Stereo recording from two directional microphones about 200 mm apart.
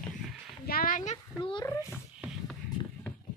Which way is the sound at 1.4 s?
20° left (ahead or behind).